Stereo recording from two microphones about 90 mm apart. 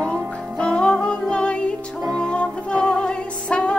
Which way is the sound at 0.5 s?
10° left (ahead or behind).